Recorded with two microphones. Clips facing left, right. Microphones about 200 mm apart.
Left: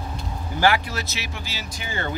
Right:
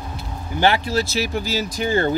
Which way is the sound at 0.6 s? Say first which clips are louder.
Right 3 dB; 25° right (ahead or behind).